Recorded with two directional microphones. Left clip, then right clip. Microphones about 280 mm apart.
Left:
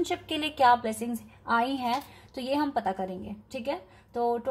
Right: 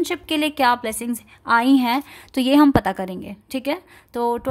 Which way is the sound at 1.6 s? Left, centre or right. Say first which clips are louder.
Right 10 dB; right.